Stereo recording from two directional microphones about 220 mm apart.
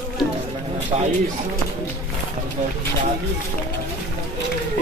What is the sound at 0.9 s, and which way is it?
Speech, 25° right (ahead or behind).